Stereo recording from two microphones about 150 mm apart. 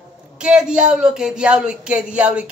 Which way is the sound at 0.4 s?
5° right (ahead or behind).